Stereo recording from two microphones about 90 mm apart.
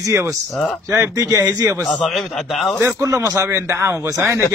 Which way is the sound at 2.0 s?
Centre (ahead or behind).